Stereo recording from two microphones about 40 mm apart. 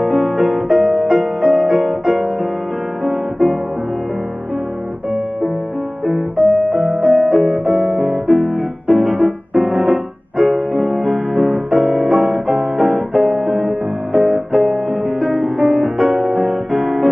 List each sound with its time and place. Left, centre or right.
0.0 s music: centre
6.0 s music: centre
6.9 s piano: centre